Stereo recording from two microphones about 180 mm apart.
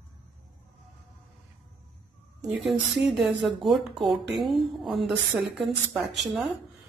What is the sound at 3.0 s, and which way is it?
A woman's voice, centre (ahead or behind).